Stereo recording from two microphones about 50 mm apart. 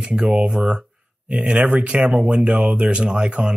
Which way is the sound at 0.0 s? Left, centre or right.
Centre.